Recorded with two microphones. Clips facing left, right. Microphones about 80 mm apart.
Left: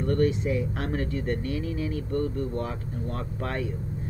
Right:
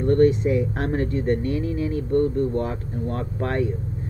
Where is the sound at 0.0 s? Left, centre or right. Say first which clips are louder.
Right 7 dB; right.